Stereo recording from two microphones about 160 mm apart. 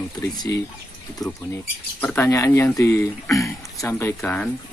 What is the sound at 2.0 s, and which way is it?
Speech, 15° left (ahead or behind).